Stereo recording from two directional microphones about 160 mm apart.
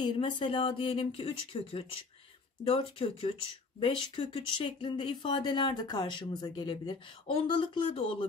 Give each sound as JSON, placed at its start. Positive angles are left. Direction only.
{"t": 0.0, "sound": "speech", "side_deg": 35}